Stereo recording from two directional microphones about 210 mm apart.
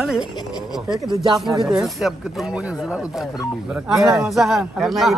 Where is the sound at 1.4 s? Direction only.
Centre (ahead or behind).